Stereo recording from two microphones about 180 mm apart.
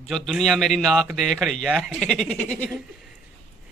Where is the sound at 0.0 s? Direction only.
Centre (ahead or behind).